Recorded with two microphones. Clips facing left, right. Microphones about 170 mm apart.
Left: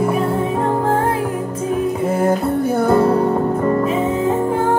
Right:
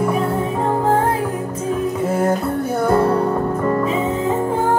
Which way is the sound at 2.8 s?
30° left (ahead or behind).